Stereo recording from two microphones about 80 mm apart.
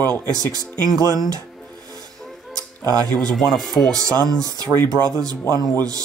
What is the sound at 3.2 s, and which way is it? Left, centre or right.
Speech, centre.